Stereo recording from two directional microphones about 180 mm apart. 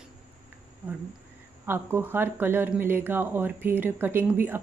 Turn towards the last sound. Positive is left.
turn(degrees=-10)  # may be behind; listen again after turning